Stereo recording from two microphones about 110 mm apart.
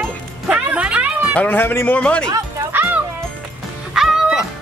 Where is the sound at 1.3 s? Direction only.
15° left (ahead or behind).